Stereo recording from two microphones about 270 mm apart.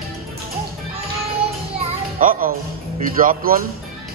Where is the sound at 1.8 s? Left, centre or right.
Right.